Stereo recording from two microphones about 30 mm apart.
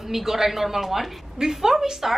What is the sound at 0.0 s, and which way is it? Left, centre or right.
A woman's voice, centre.